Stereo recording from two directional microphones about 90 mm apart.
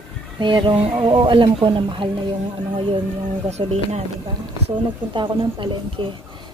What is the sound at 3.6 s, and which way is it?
Speech, 90° right.